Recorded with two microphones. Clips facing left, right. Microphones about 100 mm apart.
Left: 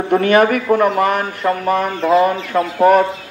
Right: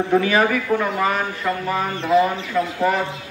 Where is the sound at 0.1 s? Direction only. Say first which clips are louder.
Left 6 dB; 65° left (ahead or behind).